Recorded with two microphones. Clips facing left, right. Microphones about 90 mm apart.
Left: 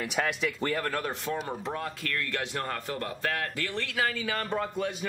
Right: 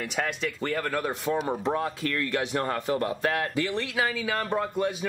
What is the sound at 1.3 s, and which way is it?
A man's voice, 20° right (ahead or behind).